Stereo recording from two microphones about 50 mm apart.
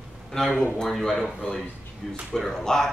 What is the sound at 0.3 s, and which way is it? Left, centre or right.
Speech, centre.